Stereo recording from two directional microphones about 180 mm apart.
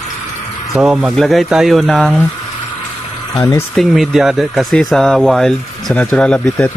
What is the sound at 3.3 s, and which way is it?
Speech, 15° left (ahead or behind).